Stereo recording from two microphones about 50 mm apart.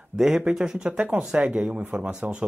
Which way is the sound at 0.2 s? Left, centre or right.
Centre.